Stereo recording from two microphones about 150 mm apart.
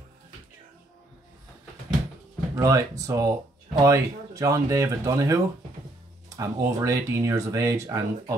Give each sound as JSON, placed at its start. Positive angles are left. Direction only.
{"t": 2.5, "sound": "speech", "side_deg": -20}